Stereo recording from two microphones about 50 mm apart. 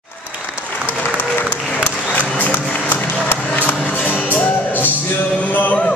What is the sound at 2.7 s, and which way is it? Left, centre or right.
Music, left.